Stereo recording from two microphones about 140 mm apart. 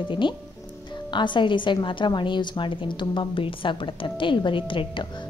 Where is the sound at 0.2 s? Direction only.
35° left (ahead or behind).